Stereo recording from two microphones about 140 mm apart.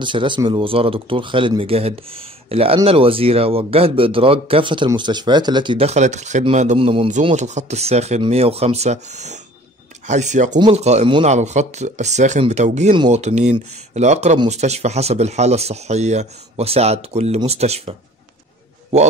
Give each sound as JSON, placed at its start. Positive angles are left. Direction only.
{"t": 0.0, "sound": "speech", "side_deg": -35}
{"t": 5.9, "sound": "speech", "side_deg": -55}
{"t": 6.8, "sound": "speech", "side_deg": -40}
{"t": 7.3, "sound": "speech", "side_deg": -55}